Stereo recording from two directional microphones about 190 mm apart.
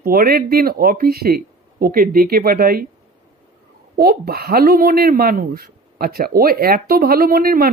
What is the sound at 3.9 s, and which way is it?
Speech, 55° right (ahead or behind).